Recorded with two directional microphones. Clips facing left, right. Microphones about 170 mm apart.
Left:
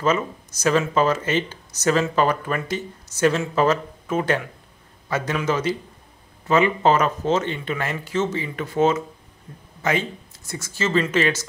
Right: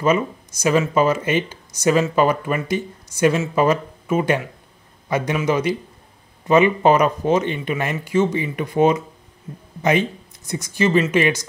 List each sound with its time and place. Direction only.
0.0 s speech: 10° right (ahead or behind)